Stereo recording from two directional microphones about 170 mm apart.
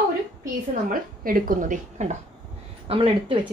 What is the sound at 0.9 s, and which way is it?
Speech, 55° right (ahead or behind).